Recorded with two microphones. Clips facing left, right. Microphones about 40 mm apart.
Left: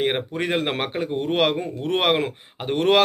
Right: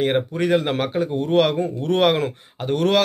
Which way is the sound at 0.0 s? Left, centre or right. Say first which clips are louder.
Right 3 dB; left.